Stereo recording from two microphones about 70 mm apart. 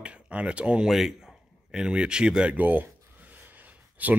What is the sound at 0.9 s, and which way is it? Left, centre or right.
Speech, centre.